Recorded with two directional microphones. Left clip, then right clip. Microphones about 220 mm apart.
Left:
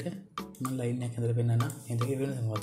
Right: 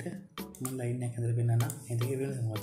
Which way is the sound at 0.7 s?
25° left (ahead or behind).